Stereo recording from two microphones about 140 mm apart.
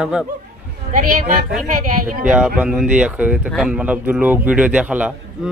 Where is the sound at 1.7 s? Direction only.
75° right (ahead or behind).